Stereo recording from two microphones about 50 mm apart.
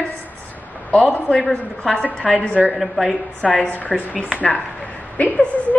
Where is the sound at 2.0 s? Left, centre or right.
Left.